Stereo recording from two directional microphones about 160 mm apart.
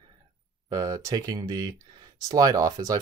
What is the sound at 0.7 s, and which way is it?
Speech, 25° right (ahead or behind).